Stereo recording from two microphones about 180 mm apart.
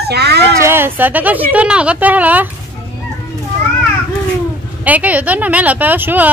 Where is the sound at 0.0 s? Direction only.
65° right (ahead or behind).